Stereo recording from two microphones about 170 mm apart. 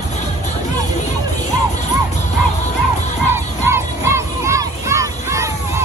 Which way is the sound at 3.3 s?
15° right (ahead or behind).